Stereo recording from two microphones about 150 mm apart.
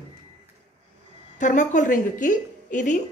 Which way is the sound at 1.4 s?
55° left (ahead or behind).